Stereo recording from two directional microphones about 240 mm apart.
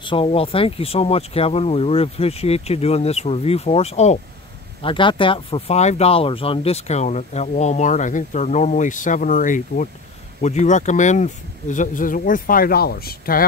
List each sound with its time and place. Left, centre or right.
0.0 s speech: left